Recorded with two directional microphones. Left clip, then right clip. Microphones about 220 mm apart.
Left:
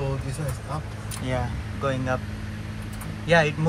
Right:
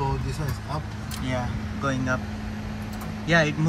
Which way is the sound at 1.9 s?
5° right (ahead or behind).